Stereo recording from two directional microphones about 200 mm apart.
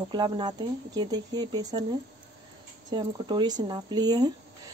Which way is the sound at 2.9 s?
20° right (ahead or behind).